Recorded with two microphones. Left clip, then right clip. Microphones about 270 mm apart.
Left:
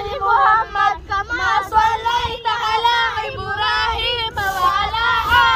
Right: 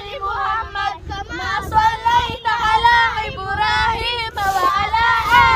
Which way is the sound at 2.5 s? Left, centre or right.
Centre.